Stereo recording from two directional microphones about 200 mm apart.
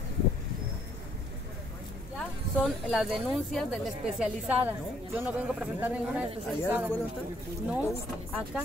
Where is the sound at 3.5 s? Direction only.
Centre (ahead or behind).